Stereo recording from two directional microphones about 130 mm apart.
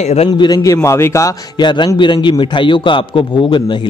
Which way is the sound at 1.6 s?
35° left (ahead or behind).